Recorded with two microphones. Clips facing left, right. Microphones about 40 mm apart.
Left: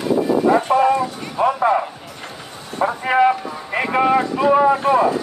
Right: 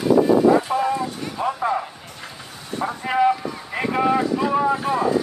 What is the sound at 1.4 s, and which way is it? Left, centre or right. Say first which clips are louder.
Music: left 7 dB; left.